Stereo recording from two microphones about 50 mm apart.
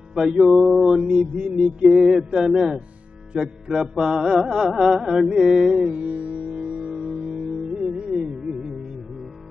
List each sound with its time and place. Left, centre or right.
0.1 s music: centre
0.8 s carnatic music: centre
1.9 s carnatic music: centre
5.9 s music: right